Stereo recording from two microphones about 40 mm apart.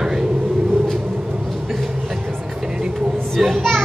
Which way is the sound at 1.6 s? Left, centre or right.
Centre.